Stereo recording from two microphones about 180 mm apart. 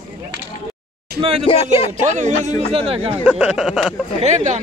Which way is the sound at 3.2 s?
5° right (ahead or behind).